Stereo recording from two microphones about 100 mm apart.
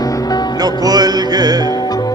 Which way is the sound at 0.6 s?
40° right (ahead or behind).